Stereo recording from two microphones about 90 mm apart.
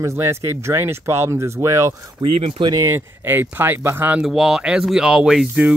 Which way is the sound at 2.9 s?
25° right (ahead or behind).